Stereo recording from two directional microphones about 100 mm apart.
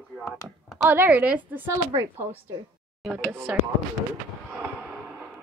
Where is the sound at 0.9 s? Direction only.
15° right (ahead or behind).